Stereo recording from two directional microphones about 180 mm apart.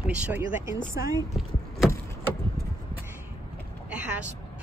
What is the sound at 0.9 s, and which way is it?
Speech, 15° right (ahead or behind).